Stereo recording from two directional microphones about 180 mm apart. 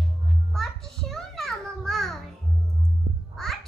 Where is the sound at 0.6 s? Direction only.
Centre (ahead or behind).